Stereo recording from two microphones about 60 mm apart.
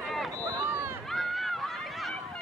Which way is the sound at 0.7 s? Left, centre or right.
Right.